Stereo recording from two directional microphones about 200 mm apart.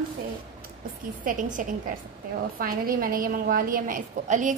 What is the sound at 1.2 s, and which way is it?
A woman's voice, 40° right (ahead or behind).